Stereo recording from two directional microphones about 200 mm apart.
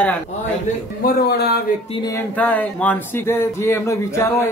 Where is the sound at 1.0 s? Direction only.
55° left (ahead or behind).